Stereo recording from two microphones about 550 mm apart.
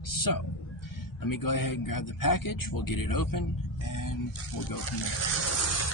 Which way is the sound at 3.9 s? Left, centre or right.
Left.